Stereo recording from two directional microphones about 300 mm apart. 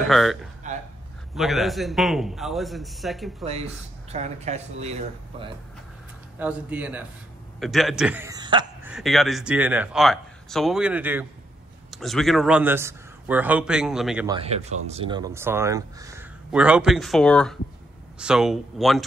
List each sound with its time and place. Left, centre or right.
0.0 s a man's voice: centre
4.1 s speech: right
6.4 s a man's voice: centre
8.9 s a man's voice: centre
14.3 s a man's voice: right; by 19.0 s centre